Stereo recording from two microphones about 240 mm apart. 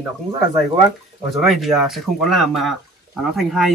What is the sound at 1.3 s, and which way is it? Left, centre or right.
Speech, centre.